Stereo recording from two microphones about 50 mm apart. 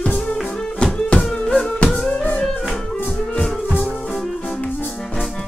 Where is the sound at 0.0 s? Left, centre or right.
Left.